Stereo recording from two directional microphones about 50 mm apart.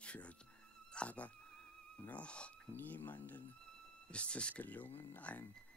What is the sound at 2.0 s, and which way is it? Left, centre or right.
Music, left.